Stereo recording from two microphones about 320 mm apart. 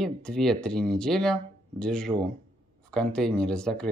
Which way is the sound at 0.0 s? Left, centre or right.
Centre.